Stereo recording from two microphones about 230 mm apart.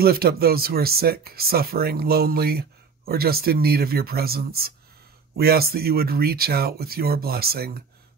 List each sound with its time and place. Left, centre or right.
0.0 s speech: right